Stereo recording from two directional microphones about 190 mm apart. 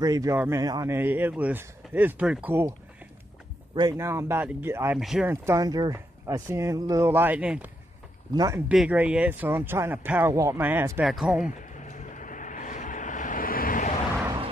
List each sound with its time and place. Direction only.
0.0 s speech: 15° right (ahead or behind)
3.7 s speech: 20° right (ahead or behind)
11.7 s vehicle: 40° left (ahead or behind)